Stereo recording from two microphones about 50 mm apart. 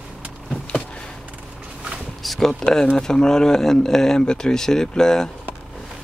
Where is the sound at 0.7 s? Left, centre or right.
Centre.